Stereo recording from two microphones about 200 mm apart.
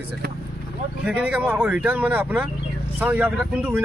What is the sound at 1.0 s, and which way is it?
Speech, 5° right (ahead or behind).